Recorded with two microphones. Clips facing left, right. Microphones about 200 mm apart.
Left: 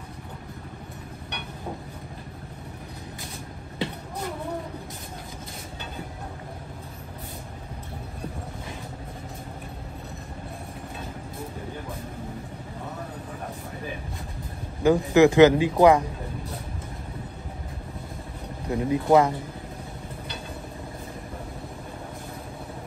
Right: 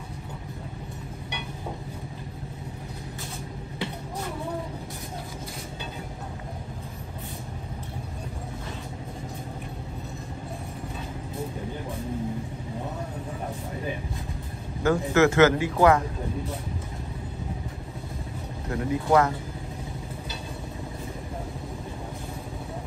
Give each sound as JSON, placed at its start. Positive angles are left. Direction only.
{"t": 14.8, "sound": "a man's voice", "side_deg": 15}
{"t": 18.7, "sound": "a man's voice", "side_deg": 20}